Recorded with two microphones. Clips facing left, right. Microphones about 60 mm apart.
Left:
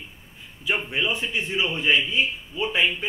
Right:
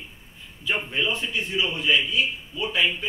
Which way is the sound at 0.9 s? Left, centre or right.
Centre.